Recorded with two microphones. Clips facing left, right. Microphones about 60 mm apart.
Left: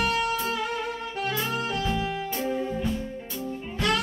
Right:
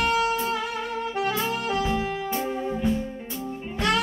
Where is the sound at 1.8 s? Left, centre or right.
Right.